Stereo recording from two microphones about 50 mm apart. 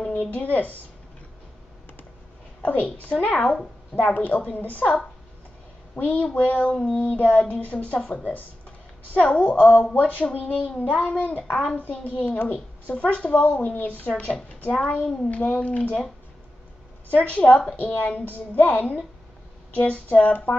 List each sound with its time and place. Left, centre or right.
0.1 s a woman's voice: left
2.6 s speech: left
3.3 s speech: centre
3.9 s a child's voice: left
5.9 s a child's voice: left
17.1 s a child's voice: left